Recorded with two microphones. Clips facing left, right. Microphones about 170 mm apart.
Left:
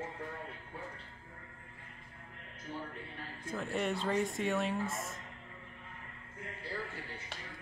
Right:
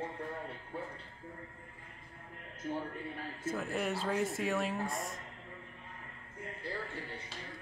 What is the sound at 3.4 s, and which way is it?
Speech, centre (ahead or behind).